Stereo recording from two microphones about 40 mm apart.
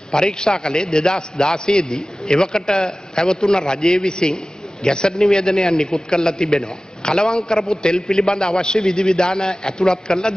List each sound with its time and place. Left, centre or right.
0.1 s a man's voice: centre
7.5 s a man's voice: centre
7.8 s a man's voice: centre